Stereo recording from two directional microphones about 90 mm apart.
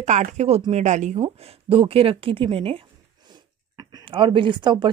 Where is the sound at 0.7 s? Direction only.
65° right (ahead or behind).